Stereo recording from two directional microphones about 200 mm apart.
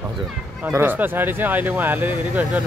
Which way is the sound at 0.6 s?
10° right (ahead or behind).